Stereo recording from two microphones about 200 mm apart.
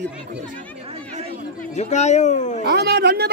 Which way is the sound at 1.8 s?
35° left (ahead or behind).